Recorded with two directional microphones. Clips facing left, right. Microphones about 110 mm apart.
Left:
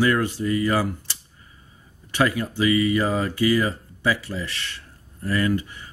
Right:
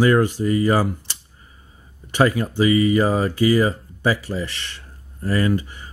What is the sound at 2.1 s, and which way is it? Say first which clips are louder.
Speech: right 4 dB; 25° right (ahead or behind).